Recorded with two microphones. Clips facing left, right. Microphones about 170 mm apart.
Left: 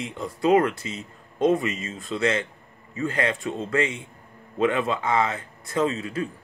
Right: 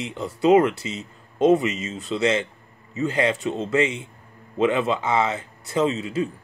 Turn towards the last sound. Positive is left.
turn(degrees=-25)  # may be behind; listen again after turning